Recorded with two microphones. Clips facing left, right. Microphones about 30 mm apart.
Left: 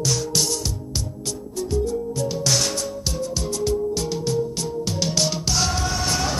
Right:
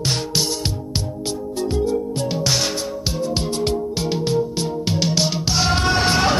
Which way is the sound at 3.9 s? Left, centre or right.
Right.